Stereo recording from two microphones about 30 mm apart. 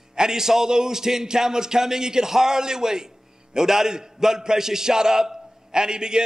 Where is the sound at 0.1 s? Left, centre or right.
Right.